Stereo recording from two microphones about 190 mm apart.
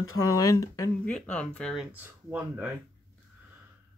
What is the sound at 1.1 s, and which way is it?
Speech, 5° left (ahead or behind).